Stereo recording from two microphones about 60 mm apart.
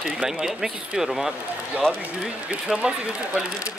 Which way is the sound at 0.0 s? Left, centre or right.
Centre.